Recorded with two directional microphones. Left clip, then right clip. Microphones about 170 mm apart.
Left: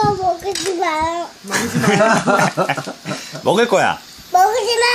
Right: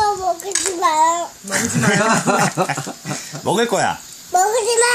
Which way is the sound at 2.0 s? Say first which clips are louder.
Left 4 dB; 35° right (ahead or behind).